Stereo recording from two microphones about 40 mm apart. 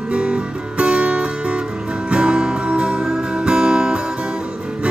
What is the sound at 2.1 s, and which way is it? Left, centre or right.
Music, right.